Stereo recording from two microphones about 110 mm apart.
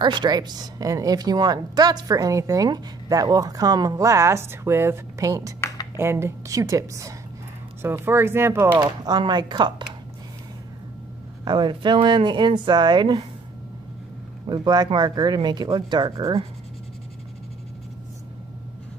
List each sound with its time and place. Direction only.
0.0 s a woman's voice: 40° right (ahead or behind); by 8.7 s 25° right (ahead or behind)
8.7 s speech: 45° right (ahead or behind)
11.4 s speech: 45° right (ahead or behind)
14.4 s a woman's voice: 40° right (ahead or behind)